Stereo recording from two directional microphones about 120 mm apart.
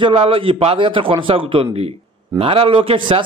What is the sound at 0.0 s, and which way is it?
A man's voice, 50° right (ahead or behind).